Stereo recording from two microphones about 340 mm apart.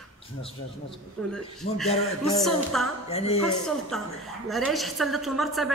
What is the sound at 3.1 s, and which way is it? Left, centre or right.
Speech, centre.